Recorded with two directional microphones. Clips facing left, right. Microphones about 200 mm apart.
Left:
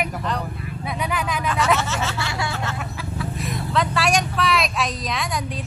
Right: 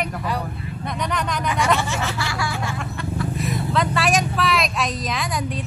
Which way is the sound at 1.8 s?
15° right (ahead or behind).